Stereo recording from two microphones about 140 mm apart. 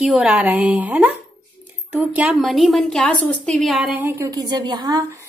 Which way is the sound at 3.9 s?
15° right (ahead or behind).